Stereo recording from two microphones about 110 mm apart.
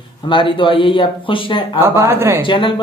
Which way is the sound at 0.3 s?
50° left (ahead or behind).